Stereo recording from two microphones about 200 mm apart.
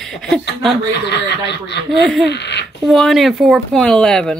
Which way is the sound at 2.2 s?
60° left (ahead or behind).